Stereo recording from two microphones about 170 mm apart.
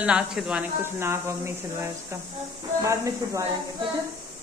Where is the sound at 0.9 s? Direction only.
15° right (ahead or behind).